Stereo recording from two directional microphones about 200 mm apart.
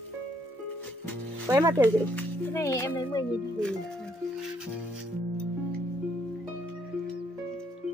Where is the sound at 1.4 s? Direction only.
15° right (ahead or behind).